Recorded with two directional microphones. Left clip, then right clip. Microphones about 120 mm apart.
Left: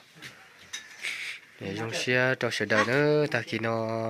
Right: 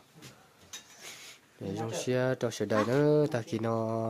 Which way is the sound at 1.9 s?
15° right (ahead or behind).